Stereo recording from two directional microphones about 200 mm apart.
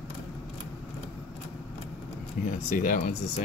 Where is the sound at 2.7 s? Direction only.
40° left (ahead or behind).